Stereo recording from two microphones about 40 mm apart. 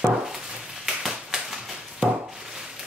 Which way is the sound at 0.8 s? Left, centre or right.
Centre.